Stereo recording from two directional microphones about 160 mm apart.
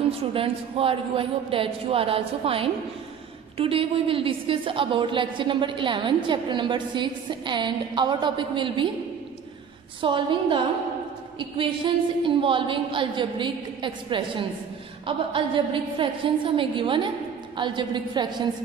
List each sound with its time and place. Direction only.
0.3 s a woman's voice: 35° right (ahead or behind)
10.0 s a woman's voice: 30° right (ahead or behind)